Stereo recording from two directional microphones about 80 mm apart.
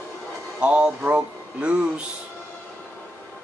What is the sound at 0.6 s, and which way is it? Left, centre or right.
Speech, centre.